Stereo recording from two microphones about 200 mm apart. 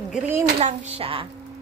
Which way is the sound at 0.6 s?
25° right (ahead or behind).